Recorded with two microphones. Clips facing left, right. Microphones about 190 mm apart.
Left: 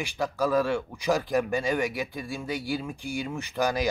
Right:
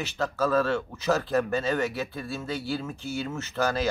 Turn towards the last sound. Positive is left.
turn(degrees=15)  # may be behind; listen again after turning